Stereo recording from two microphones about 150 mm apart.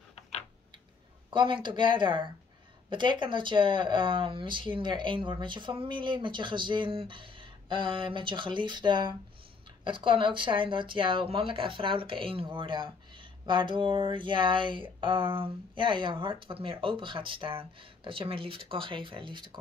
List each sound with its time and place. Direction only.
1.3 s speech: 30° right (ahead or behind)